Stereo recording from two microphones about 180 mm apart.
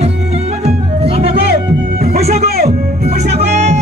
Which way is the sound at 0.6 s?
35° right (ahead or behind).